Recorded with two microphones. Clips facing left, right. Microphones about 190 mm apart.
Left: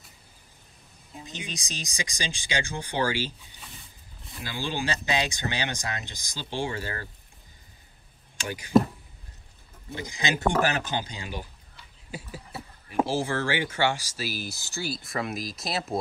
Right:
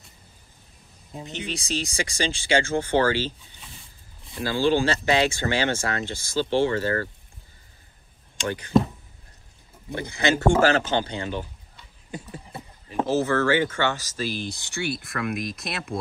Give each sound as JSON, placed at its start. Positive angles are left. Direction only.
{"t": 1.2, "sound": "speech", "side_deg": -60}
{"t": 1.5, "sound": "speech", "side_deg": 15}
{"t": 4.4, "sound": "speech", "side_deg": 15}
{"t": 8.5, "sound": "speech", "side_deg": 10}
{"t": 9.9, "sound": "speech", "side_deg": 15}
{"t": 12.3, "sound": "vehicle", "side_deg": 10}
{"t": 13.5, "sound": "speech", "side_deg": 10}
{"t": 14.7, "sound": "speech", "side_deg": -60}